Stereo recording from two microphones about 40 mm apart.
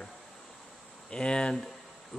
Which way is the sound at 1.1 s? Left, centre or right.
Left.